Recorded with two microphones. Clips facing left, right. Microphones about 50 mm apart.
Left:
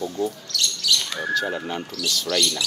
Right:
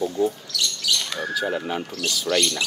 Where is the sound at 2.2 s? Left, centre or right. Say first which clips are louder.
Right 2 dB; right.